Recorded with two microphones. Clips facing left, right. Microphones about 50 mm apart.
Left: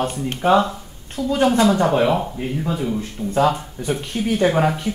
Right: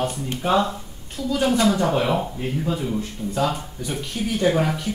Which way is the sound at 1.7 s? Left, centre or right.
Centre.